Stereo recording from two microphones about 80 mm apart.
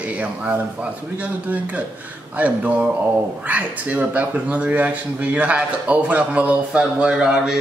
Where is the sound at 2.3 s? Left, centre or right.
Centre.